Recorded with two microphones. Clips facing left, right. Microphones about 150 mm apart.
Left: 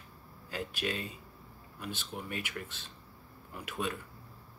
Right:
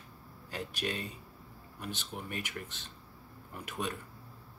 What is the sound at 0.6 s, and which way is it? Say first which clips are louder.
Speech: left 1 dB; 40° right (ahead or behind).